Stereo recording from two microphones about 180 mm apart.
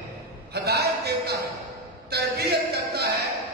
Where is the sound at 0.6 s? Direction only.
65° right (ahead or behind).